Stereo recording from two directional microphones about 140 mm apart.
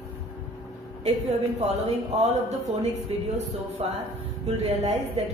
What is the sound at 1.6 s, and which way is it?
A woman's voice, 50° right (ahead or behind).